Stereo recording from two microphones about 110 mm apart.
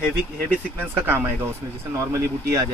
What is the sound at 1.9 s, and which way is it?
Speech, 30° right (ahead or behind).